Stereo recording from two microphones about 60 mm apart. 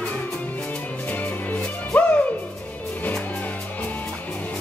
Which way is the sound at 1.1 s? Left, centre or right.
Left.